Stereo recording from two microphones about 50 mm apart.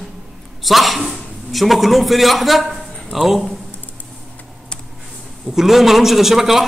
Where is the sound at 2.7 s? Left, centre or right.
Centre.